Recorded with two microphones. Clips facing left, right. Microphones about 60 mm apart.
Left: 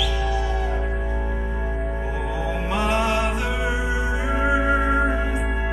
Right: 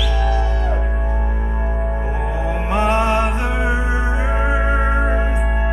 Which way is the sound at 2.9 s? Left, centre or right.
Right.